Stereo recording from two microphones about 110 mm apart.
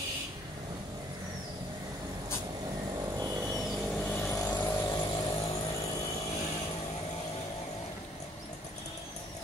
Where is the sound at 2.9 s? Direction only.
30° right (ahead or behind).